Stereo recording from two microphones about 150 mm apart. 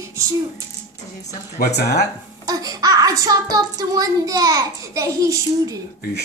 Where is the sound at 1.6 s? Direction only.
90° left.